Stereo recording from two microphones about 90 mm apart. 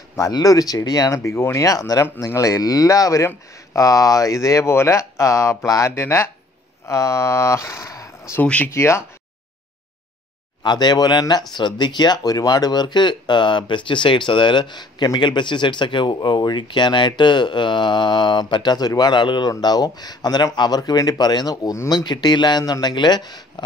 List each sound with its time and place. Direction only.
0.1 s speech: 40° left (ahead or behind)
1.2 s speech: 30° left (ahead or behind)
8.4 s speech: 15° left (ahead or behind)
8.7 s speech: 30° left (ahead or behind)
10.6 s speech: 55° left (ahead or behind)